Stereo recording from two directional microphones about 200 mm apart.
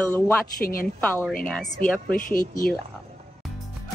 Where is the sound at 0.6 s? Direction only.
45° left (ahead or behind).